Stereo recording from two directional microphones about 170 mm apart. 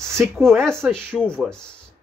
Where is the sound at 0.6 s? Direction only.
5° left (ahead or behind).